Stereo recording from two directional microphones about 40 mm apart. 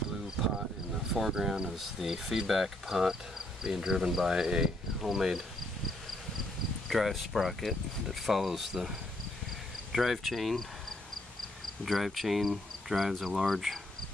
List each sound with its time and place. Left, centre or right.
1.1 s speech: centre
6.9 s speech: centre
9.9 s speech: centre
11.8 s speech: centre